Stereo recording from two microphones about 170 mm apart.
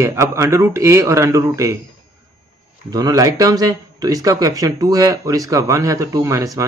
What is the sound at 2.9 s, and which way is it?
Speech, 20° right (ahead or behind).